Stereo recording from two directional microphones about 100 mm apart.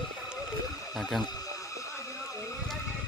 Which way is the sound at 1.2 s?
35° left (ahead or behind).